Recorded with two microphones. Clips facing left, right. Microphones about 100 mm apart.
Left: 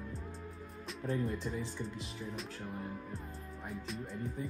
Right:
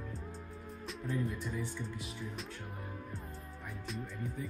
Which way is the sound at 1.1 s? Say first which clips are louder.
Even; 30° left (ahead or behind).